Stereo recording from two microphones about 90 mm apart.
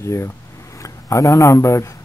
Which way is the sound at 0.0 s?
30° left (ahead or behind).